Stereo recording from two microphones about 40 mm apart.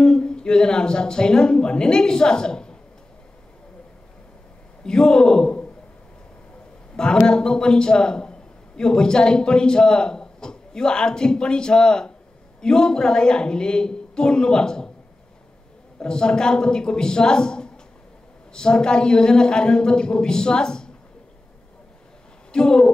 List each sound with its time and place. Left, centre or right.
0.0 s a woman's voice: centre
4.8 s a man's voice: centre
7.2 s a man's voice: centre
16.0 s a man's voice: centre
22.5 s speech: centre